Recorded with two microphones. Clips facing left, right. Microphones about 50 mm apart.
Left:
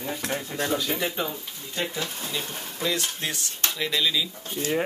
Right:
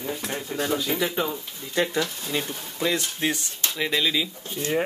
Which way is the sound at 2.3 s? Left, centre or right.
Right.